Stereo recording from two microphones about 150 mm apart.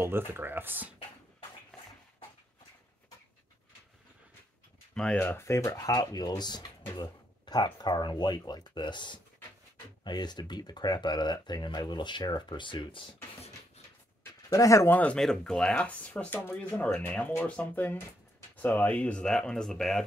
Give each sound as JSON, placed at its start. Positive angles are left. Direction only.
{"t": 0.0, "sound": "speech", "side_deg": -15}
{"t": 4.9, "sound": "speech", "side_deg": 5}
{"t": 5.2, "sound": "speech", "side_deg": 15}
{"t": 14.5, "sound": "speech", "side_deg": 20}